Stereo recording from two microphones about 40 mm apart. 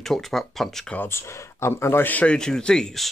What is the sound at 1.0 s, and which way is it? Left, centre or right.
Speech, left.